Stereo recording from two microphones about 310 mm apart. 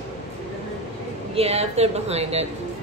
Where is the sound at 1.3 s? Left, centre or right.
Centre.